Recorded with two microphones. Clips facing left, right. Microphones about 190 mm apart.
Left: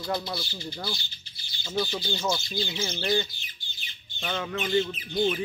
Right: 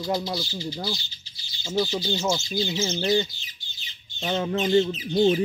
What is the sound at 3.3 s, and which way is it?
Bird, 55° left (ahead or behind).